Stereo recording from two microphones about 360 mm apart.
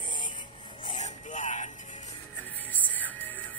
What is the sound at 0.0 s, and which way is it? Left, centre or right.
Music, centre.